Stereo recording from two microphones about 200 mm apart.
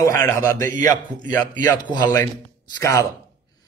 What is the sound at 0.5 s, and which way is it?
A man's voice, 15° left (ahead or behind).